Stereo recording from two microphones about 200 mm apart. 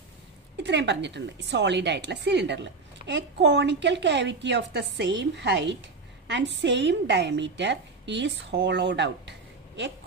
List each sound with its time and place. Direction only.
0.6 s a woman's voice: 60° right (ahead or behind)